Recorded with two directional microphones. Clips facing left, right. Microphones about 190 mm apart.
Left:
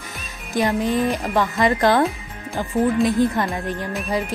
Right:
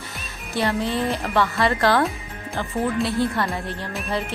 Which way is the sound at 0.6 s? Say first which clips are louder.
Left 3 dB; 15° left (ahead or behind).